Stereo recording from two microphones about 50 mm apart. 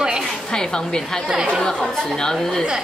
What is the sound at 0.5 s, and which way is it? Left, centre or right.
Speech, centre.